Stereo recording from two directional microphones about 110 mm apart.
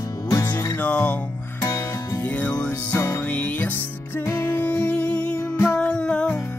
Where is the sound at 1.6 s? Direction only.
25° left (ahead or behind).